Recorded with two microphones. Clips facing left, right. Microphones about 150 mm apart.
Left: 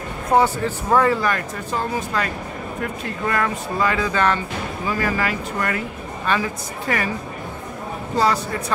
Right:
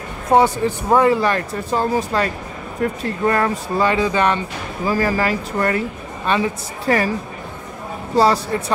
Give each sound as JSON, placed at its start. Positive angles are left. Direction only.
{"t": 0.3, "sound": "speech", "side_deg": -20}
{"t": 4.8, "sound": "speech", "side_deg": -35}
{"t": 6.2, "sound": "speech", "side_deg": -25}
{"t": 8.2, "sound": "speech", "side_deg": -35}